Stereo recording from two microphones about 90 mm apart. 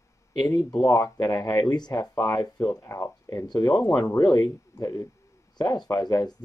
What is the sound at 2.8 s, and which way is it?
Speech, 30° left (ahead or behind).